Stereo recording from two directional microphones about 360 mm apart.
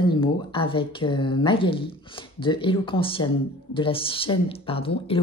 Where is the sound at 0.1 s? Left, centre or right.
Centre.